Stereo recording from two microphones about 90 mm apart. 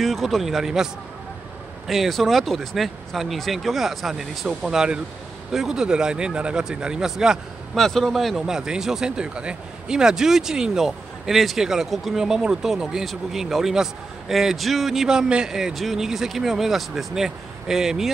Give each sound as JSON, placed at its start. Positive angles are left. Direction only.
{"t": 0.0, "sound": "a man's voice", "side_deg": 0}
{"t": 1.9, "sound": "a man's voice", "side_deg": 0}